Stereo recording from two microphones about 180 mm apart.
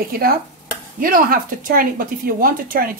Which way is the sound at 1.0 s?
50° right (ahead or behind).